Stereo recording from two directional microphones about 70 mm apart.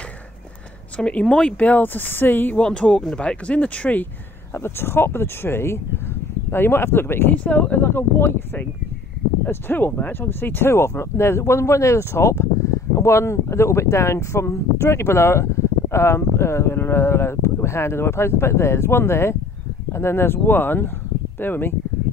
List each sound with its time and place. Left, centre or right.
0.9 s speech: centre
2.5 s speech: centre
4.6 s speech: left
7.3 s speech: left